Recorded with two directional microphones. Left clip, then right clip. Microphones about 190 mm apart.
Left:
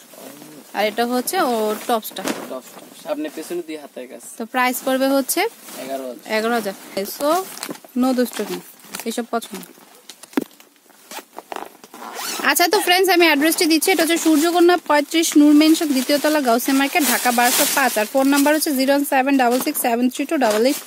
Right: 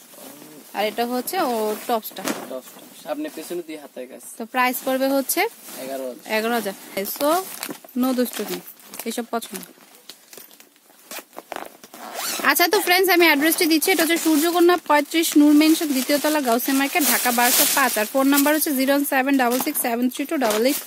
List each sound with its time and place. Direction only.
0.7 s speech: 5° left (ahead or behind)
11.1 s zipper: 25° right (ahead or behind)
12.4 s speech: 5° left (ahead or behind)